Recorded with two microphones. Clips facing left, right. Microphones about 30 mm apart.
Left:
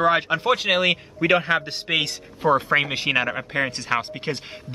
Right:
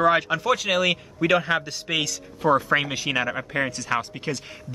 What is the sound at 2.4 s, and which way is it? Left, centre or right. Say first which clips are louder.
Speech: left 1 dB; left.